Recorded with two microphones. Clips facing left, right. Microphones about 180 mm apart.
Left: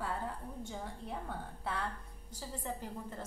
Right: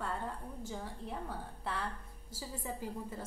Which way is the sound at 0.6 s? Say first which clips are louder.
Right 3 dB; centre (ahead or behind).